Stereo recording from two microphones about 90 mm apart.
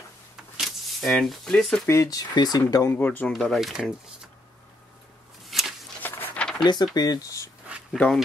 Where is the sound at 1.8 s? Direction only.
35° left (ahead or behind).